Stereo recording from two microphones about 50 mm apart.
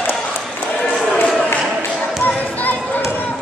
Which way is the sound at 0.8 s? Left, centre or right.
Centre.